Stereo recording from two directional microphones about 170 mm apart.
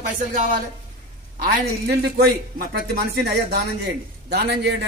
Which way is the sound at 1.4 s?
60° right (ahead or behind).